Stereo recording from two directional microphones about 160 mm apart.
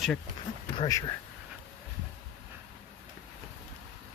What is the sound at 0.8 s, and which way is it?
Speech, 20° left (ahead or behind).